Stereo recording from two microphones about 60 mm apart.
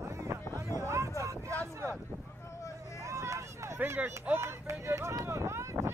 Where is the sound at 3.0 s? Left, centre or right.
Right.